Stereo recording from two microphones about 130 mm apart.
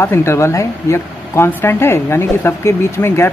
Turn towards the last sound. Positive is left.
turn(degrees=20)  # may be behind; listen again after turning